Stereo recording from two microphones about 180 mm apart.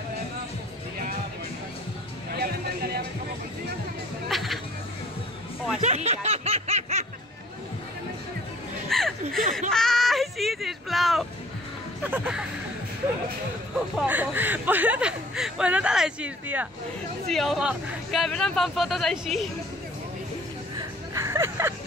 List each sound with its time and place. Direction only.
2.3 s music: 60° right (ahead or behind)
4.3 s hubbub: centre (ahead or behind)
5.8 s snicker: 40° right (ahead or behind)
8.8 s a sound: centre (ahead or behind)
13.9 s a sound: 10° right (ahead or behind)
17.3 s speech: centre (ahead or behind)
20.7 s music: 15° right (ahead or behind)